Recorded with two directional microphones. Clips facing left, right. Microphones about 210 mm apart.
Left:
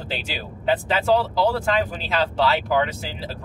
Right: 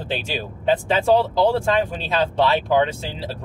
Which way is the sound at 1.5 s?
25° right (ahead or behind).